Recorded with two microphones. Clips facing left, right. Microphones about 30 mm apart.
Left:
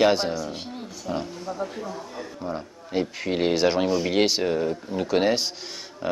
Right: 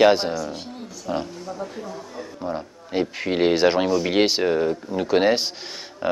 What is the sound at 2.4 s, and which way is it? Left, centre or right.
Speech, centre.